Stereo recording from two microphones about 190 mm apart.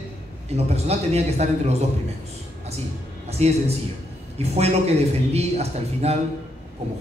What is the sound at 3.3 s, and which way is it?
A man's voice, 35° right (ahead or behind).